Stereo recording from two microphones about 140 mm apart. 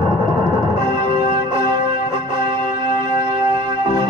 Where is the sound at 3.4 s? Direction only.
35° right (ahead or behind).